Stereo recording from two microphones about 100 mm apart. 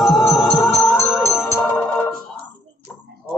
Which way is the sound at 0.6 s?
20° left (ahead or behind).